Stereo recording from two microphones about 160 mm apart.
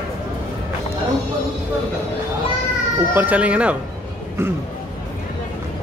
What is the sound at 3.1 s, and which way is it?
Speech, 10° right (ahead or behind).